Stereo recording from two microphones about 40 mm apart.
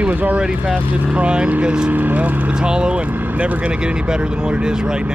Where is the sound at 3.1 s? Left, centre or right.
Right.